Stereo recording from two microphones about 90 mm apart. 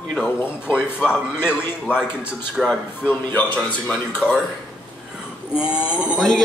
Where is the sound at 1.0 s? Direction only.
10° right (ahead or behind).